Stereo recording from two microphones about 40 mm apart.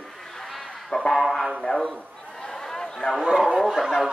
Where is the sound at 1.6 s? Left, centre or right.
Centre.